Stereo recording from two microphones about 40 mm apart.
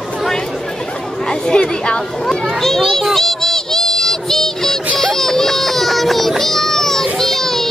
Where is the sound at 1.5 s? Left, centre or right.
Left.